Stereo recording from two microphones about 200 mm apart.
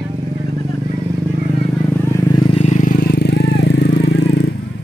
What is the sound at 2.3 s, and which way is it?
Vehicle, 30° left (ahead or behind).